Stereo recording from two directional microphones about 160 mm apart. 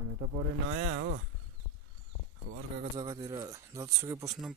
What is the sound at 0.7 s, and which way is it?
Speech, 90° right.